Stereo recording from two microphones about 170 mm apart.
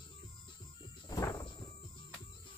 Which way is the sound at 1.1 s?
20° left (ahead or behind).